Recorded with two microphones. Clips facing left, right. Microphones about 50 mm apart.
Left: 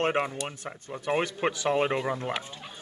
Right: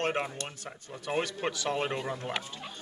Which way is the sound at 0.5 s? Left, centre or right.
Left.